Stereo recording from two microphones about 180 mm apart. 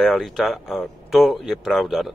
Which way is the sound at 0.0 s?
Centre (ahead or behind).